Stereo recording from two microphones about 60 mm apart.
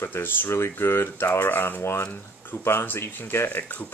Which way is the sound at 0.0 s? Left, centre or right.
Left.